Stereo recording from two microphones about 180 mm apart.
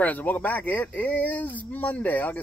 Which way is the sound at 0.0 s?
10° left (ahead or behind).